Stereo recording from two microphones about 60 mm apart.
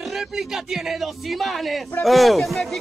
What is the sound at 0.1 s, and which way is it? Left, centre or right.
Speech, centre.